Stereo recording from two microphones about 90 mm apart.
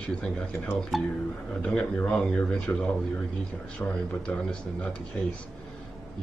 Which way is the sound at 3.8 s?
20° left (ahead or behind).